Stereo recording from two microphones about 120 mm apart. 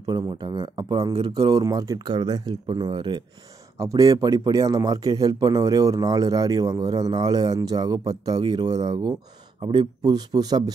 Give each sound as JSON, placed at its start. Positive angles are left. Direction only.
{"t": 0.0, "sound": "speech", "side_deg": -35}
{"t": 3.7, "sound": "speech", "side_deg": -30}